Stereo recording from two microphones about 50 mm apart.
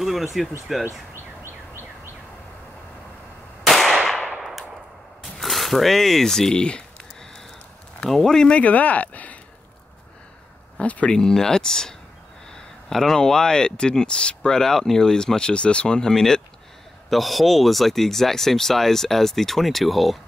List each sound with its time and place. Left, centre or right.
0.0 s speech: centre
1.1 s a sound: right
3.6 s firecracker: centre
4.3 s clang: centre
5.2 s speech: centre
8.1 s speech: centre
8.5 s speech: left
10.8 s speech: left
11.1 s speech: centre